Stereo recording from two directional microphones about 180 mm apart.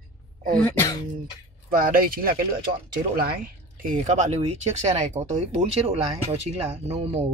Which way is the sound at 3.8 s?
45° right (ahead or behind).